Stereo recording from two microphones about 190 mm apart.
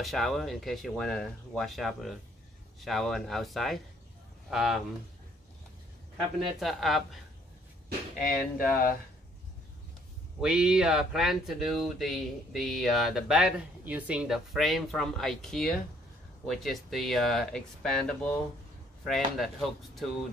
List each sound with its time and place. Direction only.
0.0 s speech: centre (ahead or behind)
6.6 s speech: centre (ahead or behind)
8.2 s speech: 50° left (ahead or behind)
10.4 s speech: 5° right (ahead or behind)